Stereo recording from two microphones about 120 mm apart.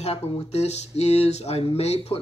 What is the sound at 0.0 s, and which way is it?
Speech, 65° left (ahead or behind).